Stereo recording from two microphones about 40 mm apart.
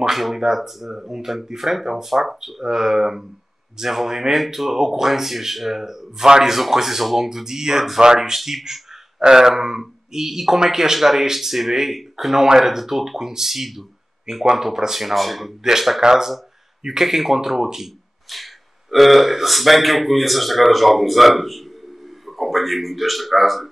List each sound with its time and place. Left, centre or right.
0.1 s speech: centre
8.4 s speech: centre